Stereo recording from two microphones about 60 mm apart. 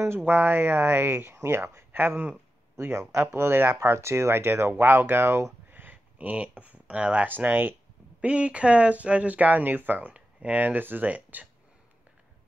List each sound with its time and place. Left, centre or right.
0.2 s speech: right
1.9 s speech: right
5.7 s a sound: right
7.2 s speech: right
8.2 s speech: right